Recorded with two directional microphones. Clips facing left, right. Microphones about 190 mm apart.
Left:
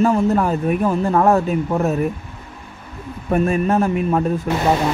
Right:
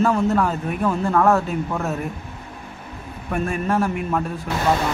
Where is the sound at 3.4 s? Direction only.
20° left (ahead or behind).